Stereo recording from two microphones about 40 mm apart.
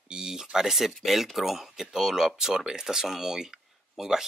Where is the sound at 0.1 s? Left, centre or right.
Centre.